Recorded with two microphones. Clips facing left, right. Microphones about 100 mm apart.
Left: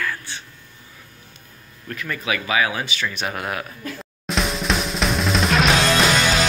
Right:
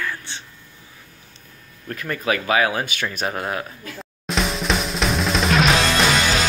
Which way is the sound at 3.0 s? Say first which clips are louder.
Right 1 dB; 30° right (ahead or behind).